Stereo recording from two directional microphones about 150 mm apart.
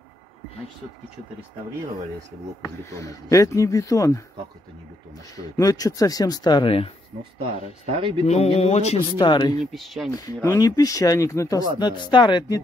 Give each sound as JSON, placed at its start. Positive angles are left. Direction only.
{"t": 2.8, "sound": "speech", "side_deg": 20}
{"t": 5.6, "sound": "speech", "side_deg": 25}
{"t": 7.5, "sound": "speech", "side_deg": -45}
{"t": 8.3, "sound": "speech", "side_deg": 45}
{"t": 9.2, "sound": "speech", "side_deg": 30}
{"t": 9.7, "sound": "speech", "side_deg": 0}
{"t": 10.1, "sound": "speech", "side_deg": 20}